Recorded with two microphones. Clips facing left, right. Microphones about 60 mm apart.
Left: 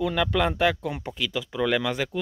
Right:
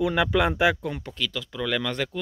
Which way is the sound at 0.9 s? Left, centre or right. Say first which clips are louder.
Left 1 dB; centre.